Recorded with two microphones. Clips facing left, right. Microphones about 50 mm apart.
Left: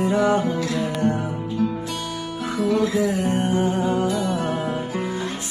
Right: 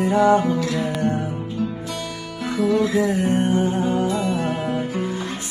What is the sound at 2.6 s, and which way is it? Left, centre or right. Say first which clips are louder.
Music: right 2 dB; right.